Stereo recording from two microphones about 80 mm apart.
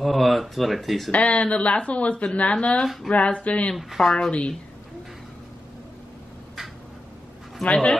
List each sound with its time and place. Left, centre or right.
0.0 s speech: centre
1.1 s speech: centre
3.7 s speech: centre
4.1 s speech: centre
7.6 s speech: centre